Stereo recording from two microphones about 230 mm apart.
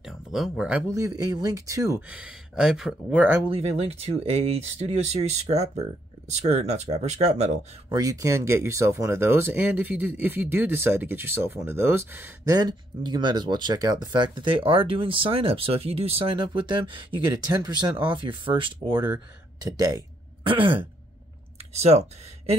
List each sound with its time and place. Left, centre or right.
0.0 s speech: centre
3.4 s speech: right
7.9 s speech: centre
20.4 s speech: right
21.5 s a sound: right